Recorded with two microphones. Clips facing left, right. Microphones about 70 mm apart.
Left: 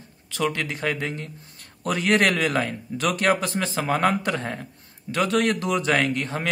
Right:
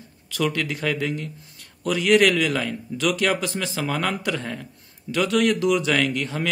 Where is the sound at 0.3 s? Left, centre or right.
Left.